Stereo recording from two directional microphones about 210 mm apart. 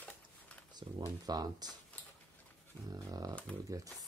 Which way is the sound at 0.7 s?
20° right (ahead or behind).